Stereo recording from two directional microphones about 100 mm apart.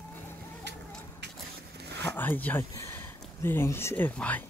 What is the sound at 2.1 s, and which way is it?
Speech, 20° left (ahead or behind).